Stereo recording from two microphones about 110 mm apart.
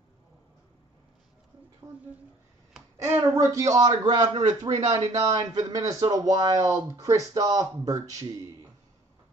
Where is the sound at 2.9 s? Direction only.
25° right (ahead or behind).